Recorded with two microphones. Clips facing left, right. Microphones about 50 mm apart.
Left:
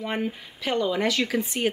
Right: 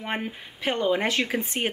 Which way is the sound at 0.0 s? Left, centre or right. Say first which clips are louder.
Left 2 dB; right.